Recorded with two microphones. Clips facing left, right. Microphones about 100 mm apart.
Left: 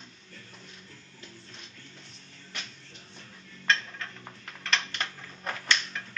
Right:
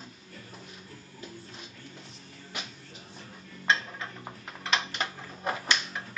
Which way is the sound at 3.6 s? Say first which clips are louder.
Right 1 dB; 10° right (ahead or behind).